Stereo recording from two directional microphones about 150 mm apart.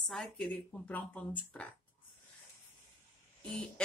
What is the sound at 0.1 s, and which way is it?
Speech, 5° left (ahead or behind).